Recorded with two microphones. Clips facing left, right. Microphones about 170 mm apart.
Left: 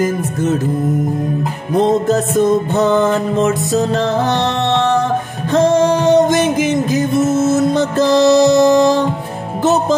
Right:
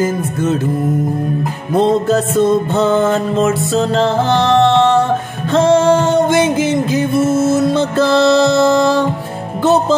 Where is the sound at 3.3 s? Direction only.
15° left (ahead or behind).